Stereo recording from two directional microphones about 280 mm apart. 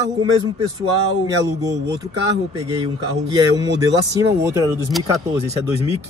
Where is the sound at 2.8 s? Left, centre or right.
Centre.